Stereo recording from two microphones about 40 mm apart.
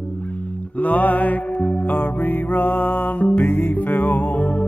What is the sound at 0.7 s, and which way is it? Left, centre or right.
Mantra, left.